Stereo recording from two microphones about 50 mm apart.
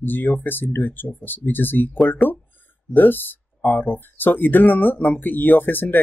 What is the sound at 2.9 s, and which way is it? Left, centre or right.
Speech, left.